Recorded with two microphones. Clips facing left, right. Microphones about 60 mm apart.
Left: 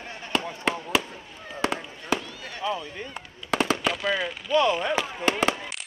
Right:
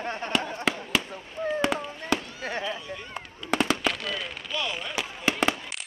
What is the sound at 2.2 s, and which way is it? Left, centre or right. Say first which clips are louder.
Fireworks: right 4 dB; right.